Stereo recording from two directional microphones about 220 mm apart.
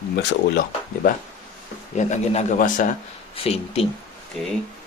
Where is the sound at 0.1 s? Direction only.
50° left (ahead or behind).